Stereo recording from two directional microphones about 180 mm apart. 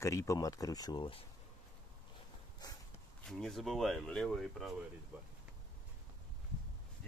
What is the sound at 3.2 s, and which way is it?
Speech, centre (ahead or behind).